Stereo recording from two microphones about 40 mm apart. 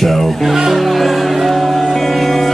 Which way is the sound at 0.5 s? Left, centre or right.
Centre.